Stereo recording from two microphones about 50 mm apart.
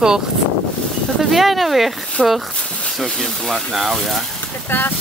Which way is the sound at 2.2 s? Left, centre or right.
Centre.